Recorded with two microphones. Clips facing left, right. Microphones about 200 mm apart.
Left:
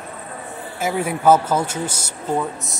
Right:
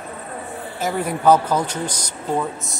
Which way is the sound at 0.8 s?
5° left (ahead or behind).